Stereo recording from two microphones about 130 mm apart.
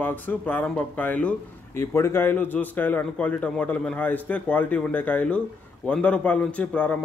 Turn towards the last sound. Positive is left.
turn(degrees=10)  # may be behind; listen again after turning